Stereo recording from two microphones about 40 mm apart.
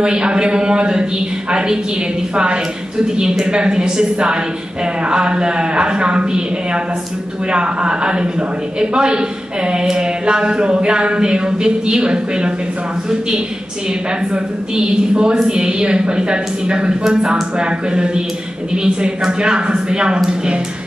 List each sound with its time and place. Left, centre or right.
0.0 s a man's voice: right
14.3 s a man's voice: right